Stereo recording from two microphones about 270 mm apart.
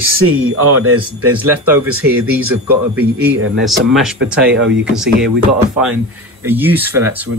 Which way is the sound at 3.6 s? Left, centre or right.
Centre.